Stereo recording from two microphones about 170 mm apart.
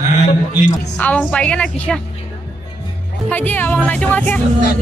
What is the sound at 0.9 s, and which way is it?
Speech, 10° left (ahead or behind).